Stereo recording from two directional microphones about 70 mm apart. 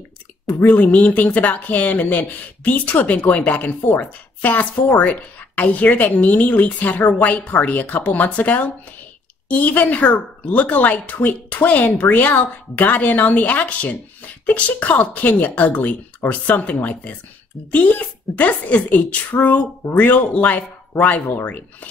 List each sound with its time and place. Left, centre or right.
0.5 s speech: left